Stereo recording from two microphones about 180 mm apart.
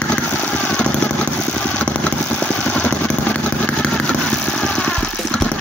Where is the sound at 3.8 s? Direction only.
5° left (ahead or behind).